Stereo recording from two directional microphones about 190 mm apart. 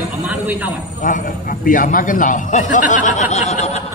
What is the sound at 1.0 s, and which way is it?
A man's voice, 45° left (ahead or behind).